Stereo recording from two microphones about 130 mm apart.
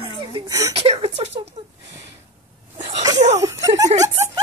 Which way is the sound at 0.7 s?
50° right (ahead or behind).